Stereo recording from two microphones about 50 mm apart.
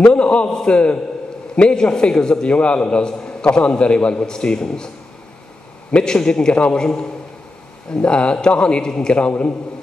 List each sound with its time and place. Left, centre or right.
0.0 s a man's voice: left
5.9 s a man's voice: centre